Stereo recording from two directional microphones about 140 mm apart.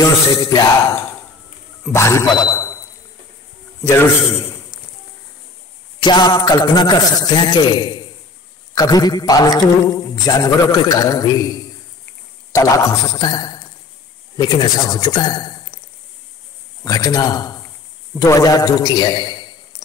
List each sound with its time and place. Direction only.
0.0 s a man's voice: 25° left (ahead or behind)
1.9 s a man's voice: 20° left (ahead or behind)
3.8 s a man's voice: 15° left (ahead or behind)
6.0 s a man's voice: 30° left (ahead or behind)
12.5 s a man's voice: 25° left (ahead or behind)
16.8 s a man's voice: 25° left (ahead or behind)